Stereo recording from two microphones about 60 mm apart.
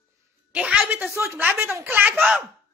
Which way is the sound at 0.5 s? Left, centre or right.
Centre.